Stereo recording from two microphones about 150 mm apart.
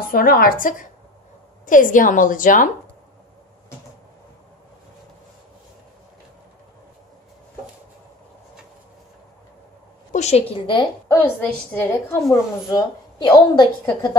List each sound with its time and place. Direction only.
0.0 s a woman's voice: 75° left (ahead or behind)
10.1 s a woman's voice: 45° left (ahead or behind)
11.1 s a woman's voice: 15° left (ahead or behind)